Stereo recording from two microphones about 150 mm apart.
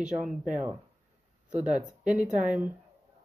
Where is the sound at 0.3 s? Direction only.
55° right (ahead or behind).